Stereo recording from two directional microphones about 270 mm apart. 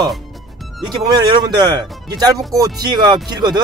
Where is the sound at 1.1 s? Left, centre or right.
Centre.